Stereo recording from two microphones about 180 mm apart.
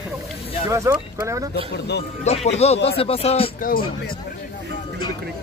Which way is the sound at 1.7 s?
70° left (ahead or behind).